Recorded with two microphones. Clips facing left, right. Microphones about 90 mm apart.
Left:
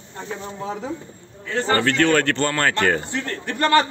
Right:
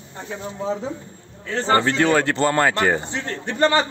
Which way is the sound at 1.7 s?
20° right (ahead or behind).